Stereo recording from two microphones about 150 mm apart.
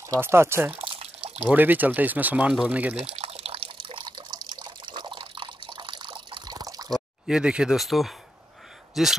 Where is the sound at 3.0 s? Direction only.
40° right (ahead or behind).